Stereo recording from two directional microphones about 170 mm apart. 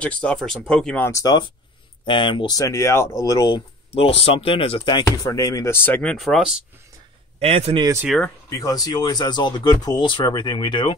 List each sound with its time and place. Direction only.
0.0 s speech: 5° left (ahead or behind)
7.3 s a man's voice: 35° right (ahead or behind)
7.8 s speech: 15° right (ahead or behind)
8.5 s speech: 20° left (ahead or behind)